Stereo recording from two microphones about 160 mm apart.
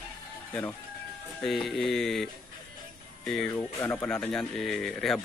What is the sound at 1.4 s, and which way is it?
Speech, centre (ahead or behind).